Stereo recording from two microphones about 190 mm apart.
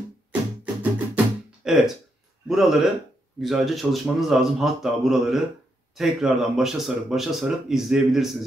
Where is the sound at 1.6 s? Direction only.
Centre (ahead or behind).